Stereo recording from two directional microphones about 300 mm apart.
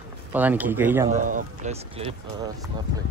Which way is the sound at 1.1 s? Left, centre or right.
Right.